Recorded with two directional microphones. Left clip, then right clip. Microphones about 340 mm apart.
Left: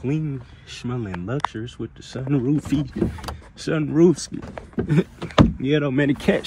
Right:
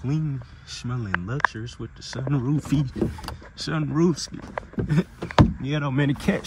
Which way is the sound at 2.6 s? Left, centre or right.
Centre.